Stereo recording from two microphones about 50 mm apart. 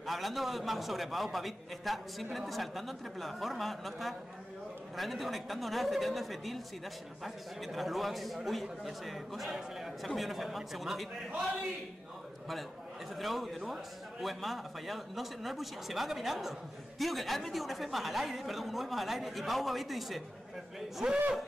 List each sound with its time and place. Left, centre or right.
0.0 s a woman's voice: centre
13.1 s a woman's voice: centre